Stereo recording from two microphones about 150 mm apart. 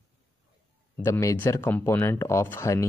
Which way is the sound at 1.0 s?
20° left (ahead or behind).